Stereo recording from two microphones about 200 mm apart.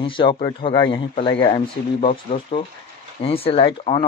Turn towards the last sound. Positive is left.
turn(degrees=25)  # may be behind; listen again after turning